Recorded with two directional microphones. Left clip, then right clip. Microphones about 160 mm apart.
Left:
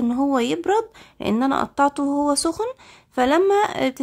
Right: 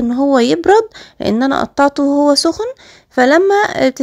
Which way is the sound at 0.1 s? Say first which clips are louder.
Right 11 dB; 25° right (ahead or behind).